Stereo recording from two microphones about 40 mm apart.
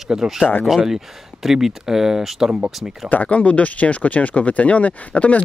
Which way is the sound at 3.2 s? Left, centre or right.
Left.